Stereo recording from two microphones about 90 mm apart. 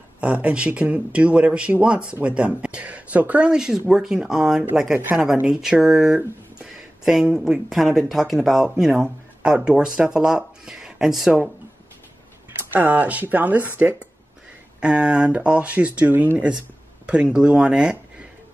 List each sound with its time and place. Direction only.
0.2 s speech: 15° right (ahead or behind)
12.7 s speech: 20° right (ahead or behind)